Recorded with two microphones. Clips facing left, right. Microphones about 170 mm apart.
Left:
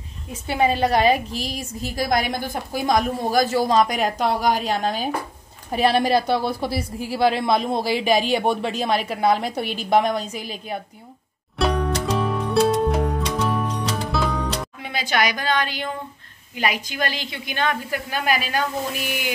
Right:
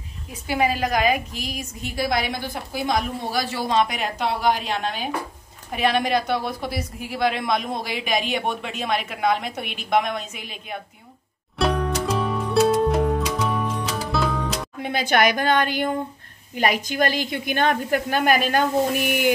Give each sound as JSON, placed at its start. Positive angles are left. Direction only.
{"t": 0.5, "sound": "a woman's voice", "side_deg": 30}
{"t": 11.5, "sound": "music", "side_deg": 0}
{"t": 14.8, "sound": "a woman's voice", "side_deg": -50}